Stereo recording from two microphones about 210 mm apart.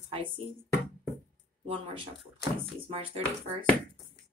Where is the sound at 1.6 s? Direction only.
25° right (ahead or behind).